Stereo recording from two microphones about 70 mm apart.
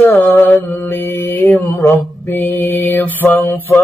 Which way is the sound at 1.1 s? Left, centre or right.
Left.